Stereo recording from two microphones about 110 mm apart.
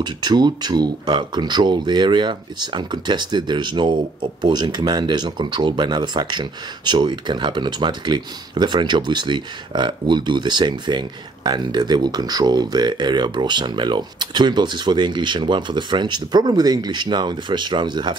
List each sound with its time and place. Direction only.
0.0 s speech: 40° right (ahead or behind)